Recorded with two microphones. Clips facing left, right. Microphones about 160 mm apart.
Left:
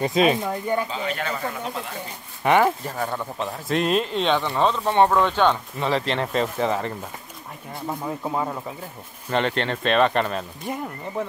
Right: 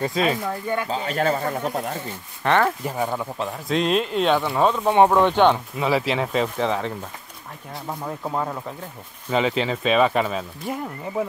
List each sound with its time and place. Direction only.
0.0 s speech: 20° left (ahead or behind)
0.8 s speech: 40° right (ahead or behind)
2.4 s speech: 10° left (ahead or behind)
2.8 s speech: 10° right (ahead or behind)
5.8 s speech: 5° right (ahead or behind)